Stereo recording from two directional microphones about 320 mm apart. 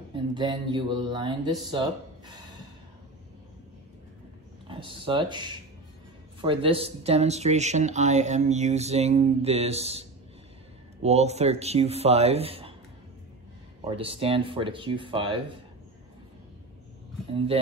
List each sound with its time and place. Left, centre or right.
0.1 s speech: centre
4.6 s speech: centre
13.9 s speech: centre